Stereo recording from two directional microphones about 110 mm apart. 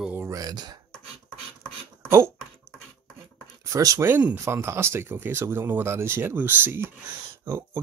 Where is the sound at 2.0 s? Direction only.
25° right (ahead or behind).